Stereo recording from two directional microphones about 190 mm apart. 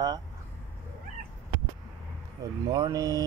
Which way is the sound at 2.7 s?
20° right (ahead or behind).